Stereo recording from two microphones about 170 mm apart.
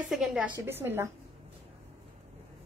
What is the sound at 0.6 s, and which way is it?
Speech, 15° right (ahead or behind).